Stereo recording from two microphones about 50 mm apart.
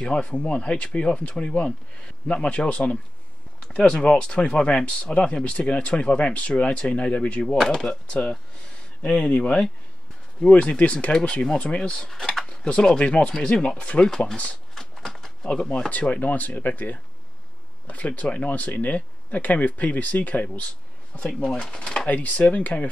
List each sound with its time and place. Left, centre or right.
0.0 s speech: left
7.5 s speech: centre
7.8 s speech: centre
12.4 s speech: left
14.8 s a sound: centre
15.4 s speech: centre
15.9 s speech: left
21.2 s speech: left
22.0 s speech: left